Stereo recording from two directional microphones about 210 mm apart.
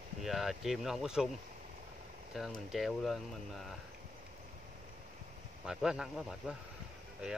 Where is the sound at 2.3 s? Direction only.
Centre (ahead or behind).